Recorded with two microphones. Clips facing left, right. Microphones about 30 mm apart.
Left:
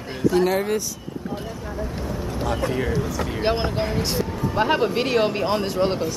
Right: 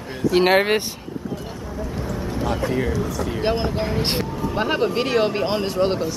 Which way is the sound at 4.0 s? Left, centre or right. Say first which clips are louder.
Right 1 dB; right.